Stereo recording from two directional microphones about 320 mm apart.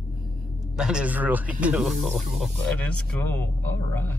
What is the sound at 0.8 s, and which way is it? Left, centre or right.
Speech, centre.